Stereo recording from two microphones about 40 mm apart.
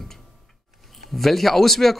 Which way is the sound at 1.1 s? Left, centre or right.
Centre.